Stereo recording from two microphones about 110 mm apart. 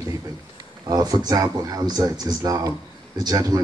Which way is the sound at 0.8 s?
35° right (ahead or behind).